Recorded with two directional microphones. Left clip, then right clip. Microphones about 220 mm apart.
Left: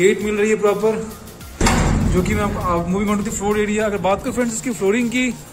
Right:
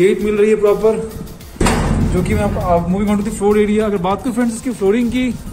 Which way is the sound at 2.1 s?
Centre (ahead or behind).